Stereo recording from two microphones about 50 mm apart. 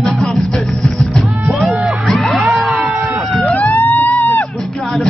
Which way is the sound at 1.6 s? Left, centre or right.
Centre.